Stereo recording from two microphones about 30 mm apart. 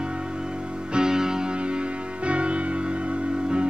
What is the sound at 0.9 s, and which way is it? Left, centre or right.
Music, right.